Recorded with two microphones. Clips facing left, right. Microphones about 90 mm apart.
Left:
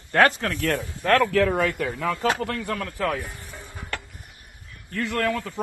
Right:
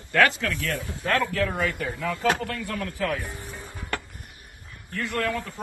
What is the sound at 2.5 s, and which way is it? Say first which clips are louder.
Speech: left 2 dB; 50° left (ahead or behind).